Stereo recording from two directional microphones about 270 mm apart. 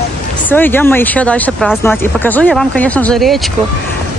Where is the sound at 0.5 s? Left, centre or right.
Centre.